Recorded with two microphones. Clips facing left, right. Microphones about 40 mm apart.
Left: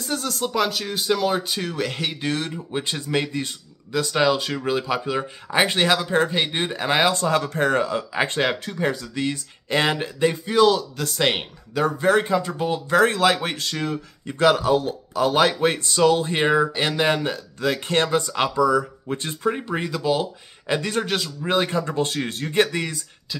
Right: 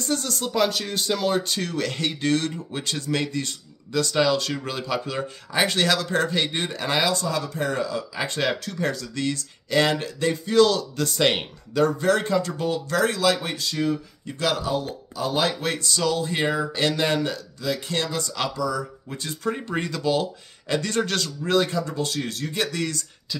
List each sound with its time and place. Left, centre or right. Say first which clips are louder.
0.0 s speech: left 1 dB; centre
7.0 s speech: left 4 dB; left
8.4 s speech: left 2 dB; left
12.9 s speech: left 5 dB; left
15.6 s speech: left 6 dB; left
16.7 s speech: left 1 dB; left
17.6 s speech: left 6 dB; left
19.7 s speech: left 1 dB; centre
21.6 s speech: left 3 dB; left